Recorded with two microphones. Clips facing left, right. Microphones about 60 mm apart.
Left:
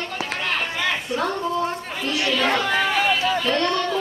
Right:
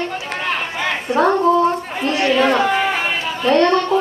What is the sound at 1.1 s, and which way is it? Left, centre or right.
Speech, right.